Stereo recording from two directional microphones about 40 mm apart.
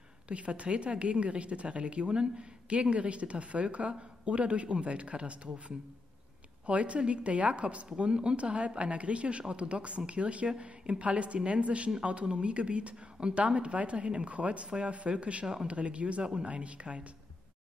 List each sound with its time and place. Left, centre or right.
0.3 s speech: right
6.6 s speech: right
15.4 s speech: centre
15.7 s speech: right